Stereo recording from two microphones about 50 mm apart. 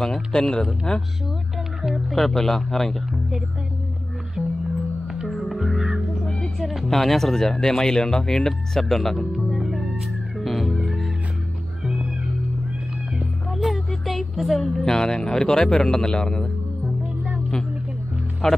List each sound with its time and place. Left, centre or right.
0.0 s speech: centre
1.8 s speech: centre
2.1 s speech: centre
3.1 s speech: centre
4.4 s music: right
5.3 s music: centre
6.2 s music: centre
6.6 s speech: centre
9.5 s cat: centre
10.4 s music: centre
11.8 s music: right
13.5 s a sound: centre
14.9 s speech: centre
18.4 s speech: centre